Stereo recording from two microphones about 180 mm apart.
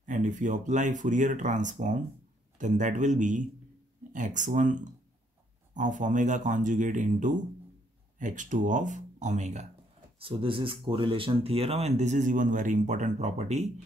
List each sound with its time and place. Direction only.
0.0 s speech: 45° right (ahead or behind)
5.8 s speech: 45° right (ahead or behind)
10.1 s speech: 30° right (ahead or behind)